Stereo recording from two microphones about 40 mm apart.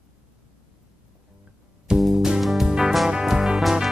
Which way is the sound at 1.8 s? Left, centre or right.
Right.